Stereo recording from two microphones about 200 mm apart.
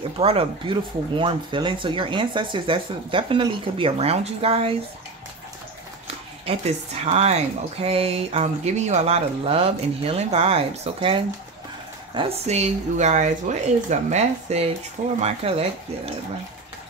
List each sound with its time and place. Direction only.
0.2 s speech: 30° right (ahead or behind)
6.4 s speech: 30° right (ahead or behind)